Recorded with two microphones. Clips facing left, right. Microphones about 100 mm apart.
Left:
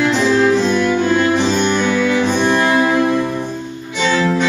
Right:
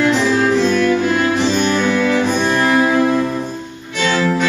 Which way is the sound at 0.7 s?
25° left (ahead or behind).